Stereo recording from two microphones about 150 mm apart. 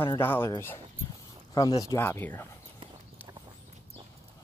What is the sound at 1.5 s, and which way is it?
Speech, 25° left (ahead or behind).